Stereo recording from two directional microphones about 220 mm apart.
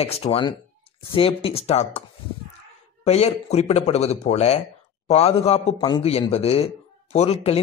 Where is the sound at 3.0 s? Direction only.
30° left (ahead or behind).